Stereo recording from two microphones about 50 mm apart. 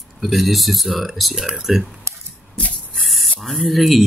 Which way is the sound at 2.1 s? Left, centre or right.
Right.